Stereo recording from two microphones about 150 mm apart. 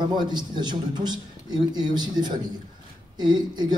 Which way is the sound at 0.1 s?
30° right (ahead or behind).